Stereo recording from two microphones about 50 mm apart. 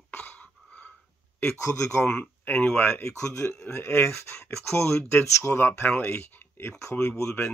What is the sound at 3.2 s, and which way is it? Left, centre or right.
Speech, left.